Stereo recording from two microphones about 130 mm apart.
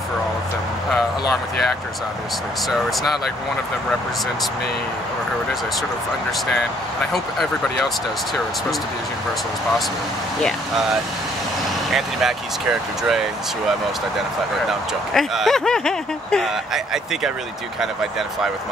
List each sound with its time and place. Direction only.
7.1 s speech: centre (ahead or behind)
11.9 s speech: centre (ahead or behind)
14.7 s speech: centre (ahead or behind)